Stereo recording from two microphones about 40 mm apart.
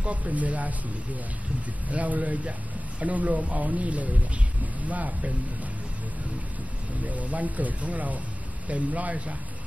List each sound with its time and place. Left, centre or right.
0.0 s speech: right
1.9 s speech: right
7.1 s speech: right